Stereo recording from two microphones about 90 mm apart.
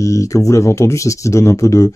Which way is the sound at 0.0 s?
35° left (ahead or behind).